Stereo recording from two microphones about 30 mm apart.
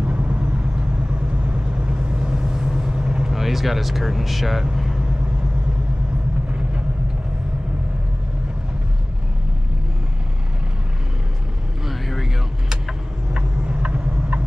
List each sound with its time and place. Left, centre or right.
0.0 s vehicle: right
2.0 s vehicle: right
3.3 s speech: centre
4.7 s vehicle: centre
11.9 s vehicle: centre
13.3 s vehicle: right